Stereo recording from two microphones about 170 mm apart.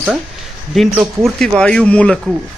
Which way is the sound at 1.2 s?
5° left (ahead or behind).